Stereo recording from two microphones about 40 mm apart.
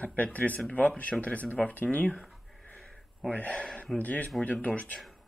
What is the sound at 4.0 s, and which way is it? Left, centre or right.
Speech, left.